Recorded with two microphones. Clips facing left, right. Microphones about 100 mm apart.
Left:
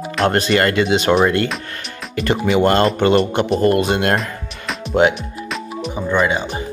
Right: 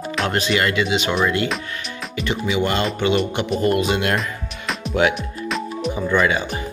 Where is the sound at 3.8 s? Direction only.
45° left (ahead or behind).